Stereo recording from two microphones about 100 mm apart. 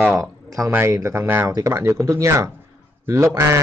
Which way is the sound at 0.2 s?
35° right (ahead or behind).